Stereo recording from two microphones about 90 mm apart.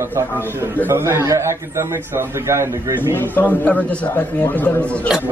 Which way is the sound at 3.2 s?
20° left (ahead or behind).